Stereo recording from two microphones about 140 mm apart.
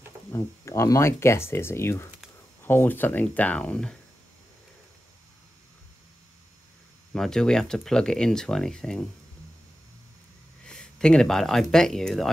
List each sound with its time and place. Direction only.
0.3 s speech: 20° left (ahead or behind)
7.2 s speech: 5° left (ahead or behind)
10.6 s speech: 5° left (ahead or behind)